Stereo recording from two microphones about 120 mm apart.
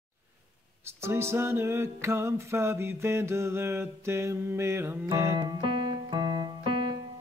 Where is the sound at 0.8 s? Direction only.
20° right (ahead or behind).